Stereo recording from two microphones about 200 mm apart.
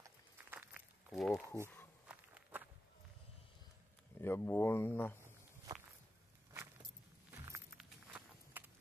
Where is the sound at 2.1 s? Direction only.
5° right (ahead or behind).